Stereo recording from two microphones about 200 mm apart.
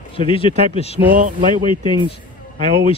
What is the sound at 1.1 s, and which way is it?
Speech, 40° right (ahead or behind).